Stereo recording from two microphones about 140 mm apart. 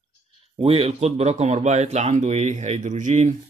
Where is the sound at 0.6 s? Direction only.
45° right (ahead or behind).